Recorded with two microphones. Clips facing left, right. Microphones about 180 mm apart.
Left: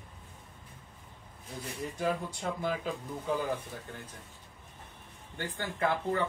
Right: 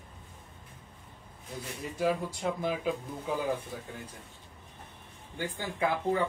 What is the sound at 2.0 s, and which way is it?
Speech, 5° right (ahead or behind).